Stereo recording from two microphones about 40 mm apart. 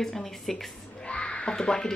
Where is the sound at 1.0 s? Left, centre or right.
Left.